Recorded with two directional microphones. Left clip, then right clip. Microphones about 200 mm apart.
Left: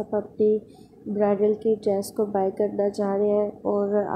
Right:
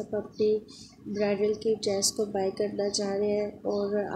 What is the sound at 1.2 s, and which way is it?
Speech, 25° left (ahead or behind).